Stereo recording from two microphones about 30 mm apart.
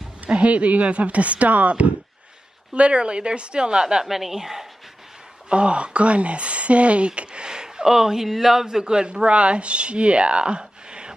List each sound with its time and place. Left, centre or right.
0.3 s speech: right
2.7 s speech: right
4.0 s speech: centre
5.5 s speech: right
7.2 s a sound: right
7.8 s speech: centre
8.6 s speech: right